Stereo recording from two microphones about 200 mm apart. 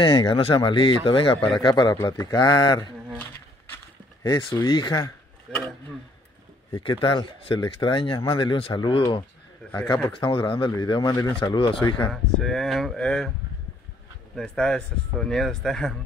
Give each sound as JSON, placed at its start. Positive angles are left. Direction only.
{"t": 0.0, "sound": "speech", "side_deg": 20}
{"t": 3.7, "sound": "a sound", "side_deg": 20}
{"t": 4.6, "sound": "speech", "side_deg": 20}
{"t": 5.5, "sound": "speech", "side_deg": 0}
{"t": 6.7, "sound": "speech", "side_deg": 25}
{"t": 12.1, "sound": "speech", "side_deg": 0}
{"t": 14.3, "sound": "speech", "side_deg": 5}